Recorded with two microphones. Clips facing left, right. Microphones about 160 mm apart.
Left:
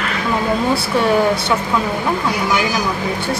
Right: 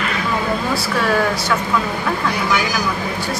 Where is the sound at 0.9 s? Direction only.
25° left (ahead or behind).